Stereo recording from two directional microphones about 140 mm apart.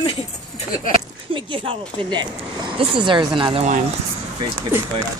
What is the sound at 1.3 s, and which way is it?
Speech, 35° right (ahead or behind).